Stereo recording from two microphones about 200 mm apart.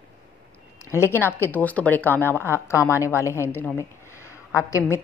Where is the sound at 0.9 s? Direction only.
10° left (ahead or behind).